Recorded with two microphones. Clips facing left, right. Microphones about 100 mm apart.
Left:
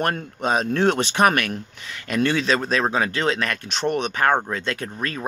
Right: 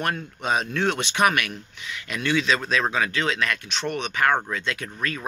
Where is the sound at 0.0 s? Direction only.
40° left (ahead or behind).